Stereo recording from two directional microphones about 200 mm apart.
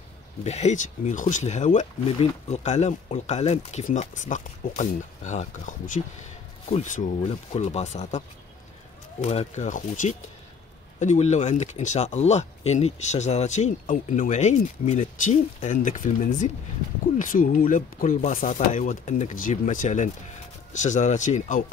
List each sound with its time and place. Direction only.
0.4 s speech: 35° left (ahead or behind)
9.2 s speech: 35° left (ahead or behind)